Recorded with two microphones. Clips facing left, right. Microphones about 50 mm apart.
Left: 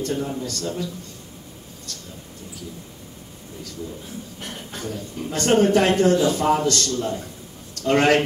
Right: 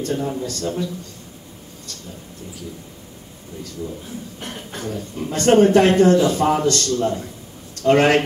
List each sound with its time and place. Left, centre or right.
0.0 s speech: right
4.4 s speech: right
7.8 s speech: centre